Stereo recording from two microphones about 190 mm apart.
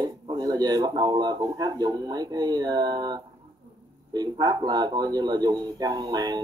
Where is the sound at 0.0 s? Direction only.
20° right (ahead or behind).